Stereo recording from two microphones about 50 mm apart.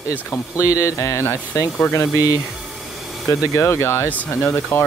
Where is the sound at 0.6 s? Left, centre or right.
Left.